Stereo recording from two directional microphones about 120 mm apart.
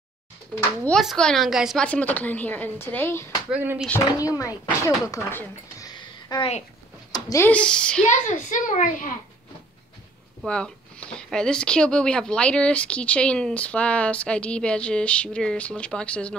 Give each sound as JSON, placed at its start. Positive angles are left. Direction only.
{"t": 0.9, "sound": "a woman's voice", "side_deg": 5}
{"t": 1.8, "sound": "speech", "side_deg": 10}
{"t": 3.5, "sound": "speech", "side_deg": -15}
{"t": 4.2, "sound": "speech", "side_deg": 30}
{"t": 5.8, "sound": "a sound", "side_deg": 30}
{"t": 7.4, "sound": "speech", "side_deg": 10}
{"t": 8.1, "sound": "a child's voice", "side_deg": 90}
{"t": 10.4, "sound": "speech", "side_deg": 10}